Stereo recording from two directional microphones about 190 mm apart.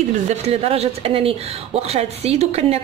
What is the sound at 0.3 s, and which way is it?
Speech, 35° right (ahead or behind).